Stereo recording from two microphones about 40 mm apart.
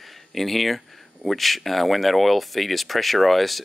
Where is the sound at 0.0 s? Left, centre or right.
Centre.